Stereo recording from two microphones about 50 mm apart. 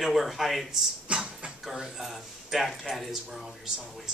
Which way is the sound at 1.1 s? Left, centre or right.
Centre.